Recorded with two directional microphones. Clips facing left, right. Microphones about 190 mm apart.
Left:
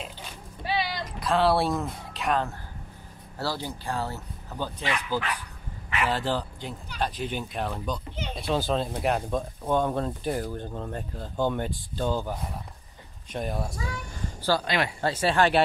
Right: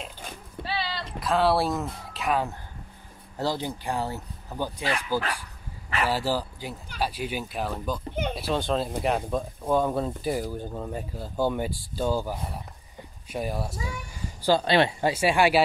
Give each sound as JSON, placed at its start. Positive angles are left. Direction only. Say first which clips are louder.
{"t": 0.7, "sound": "a sound", "louder": "left 3 dB", "side_deg": 15}
{"t": 1.2, "sound": "speech", "louder": "even", "side_deg": 0}
{"t": 3.3, "sound": "speech", "louder": "right 3 dB", "side_deg": -15}
{"t": 14.6, "sound": "speech", "louder": "right 6 dB", "side_deg": -30}
{"t": 15.0, "sound": "speech", "louder": "right 1 dB", "side_deg": -10}